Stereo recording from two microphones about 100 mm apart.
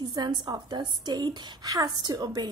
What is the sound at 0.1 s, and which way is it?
A woman's voice, 45° right (ahead or behind).